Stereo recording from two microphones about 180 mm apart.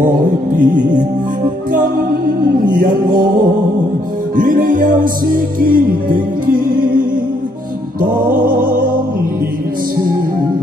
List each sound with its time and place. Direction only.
0.6 s music: 45° right (ahead or behind)
2.7 s music: 50° right (ahead or behind)
4.4 s music: 50° right (ahead or behind)
8.5 s music: 50° right (ahead or behind)